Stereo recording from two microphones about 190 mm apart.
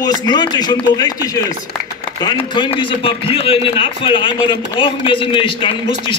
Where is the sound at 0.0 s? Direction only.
20° left (ahead or behind).